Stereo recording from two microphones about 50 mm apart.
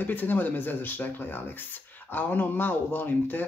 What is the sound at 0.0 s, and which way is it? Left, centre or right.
Speech, left.